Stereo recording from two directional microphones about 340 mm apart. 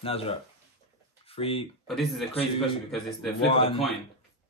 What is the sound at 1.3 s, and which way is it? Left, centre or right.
Speech, centre.